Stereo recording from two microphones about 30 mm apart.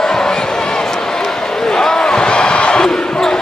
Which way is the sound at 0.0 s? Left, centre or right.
Left.